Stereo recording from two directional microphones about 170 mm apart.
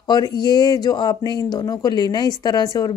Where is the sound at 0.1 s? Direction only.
25° left (ahead or behind).